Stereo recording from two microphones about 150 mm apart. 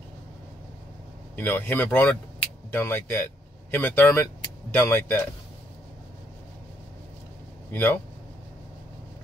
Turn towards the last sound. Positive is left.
turn(degrees=15)  # may be behind; listen again after turning